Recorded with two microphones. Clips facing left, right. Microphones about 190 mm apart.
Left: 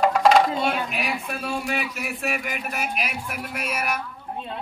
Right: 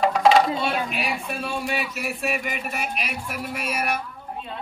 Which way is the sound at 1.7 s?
Centre (ahead or behind).